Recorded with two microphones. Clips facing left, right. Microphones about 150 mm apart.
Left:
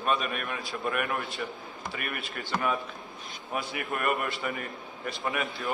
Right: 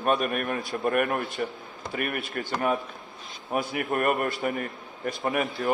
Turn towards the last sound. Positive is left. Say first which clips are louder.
# right 5 dB
turn(degrees=-45)  # may be behind; listen again after turning